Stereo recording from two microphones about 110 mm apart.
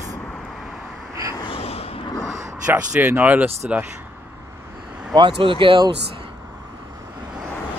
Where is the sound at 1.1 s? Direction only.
30° right (ahead or behind).